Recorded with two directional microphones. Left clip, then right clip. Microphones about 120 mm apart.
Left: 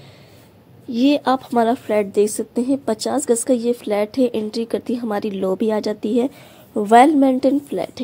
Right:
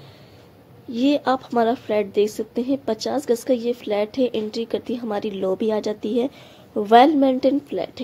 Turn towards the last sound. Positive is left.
turn(degrees=40)  # may be behind; listen again after turning